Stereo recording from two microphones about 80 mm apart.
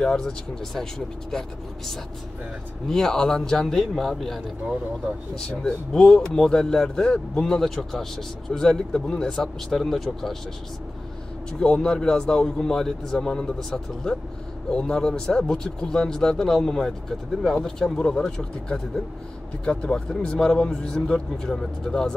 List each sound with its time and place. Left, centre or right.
0.0 s speech: centre
2.9 s a man's voice: centre
11.6 s speech: centre